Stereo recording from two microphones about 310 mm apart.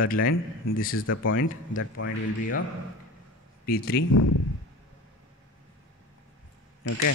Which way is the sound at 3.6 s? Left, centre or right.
Left.